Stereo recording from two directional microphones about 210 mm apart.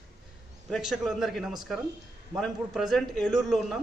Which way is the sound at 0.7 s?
Centre (ahead or behind).